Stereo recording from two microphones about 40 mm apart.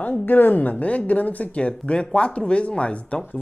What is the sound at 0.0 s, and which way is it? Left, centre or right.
Speech, left.